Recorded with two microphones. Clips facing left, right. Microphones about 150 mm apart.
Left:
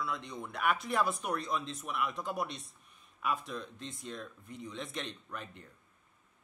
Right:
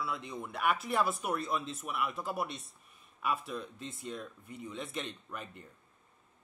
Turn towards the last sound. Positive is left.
turn(degrees=-5)  # may be behind; listen again after turning